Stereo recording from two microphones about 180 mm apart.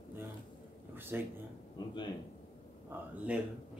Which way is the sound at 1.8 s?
25° left (ahead or behind).